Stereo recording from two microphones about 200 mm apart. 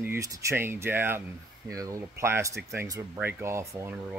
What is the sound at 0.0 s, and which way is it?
Speech, 15° right (ahead or behind).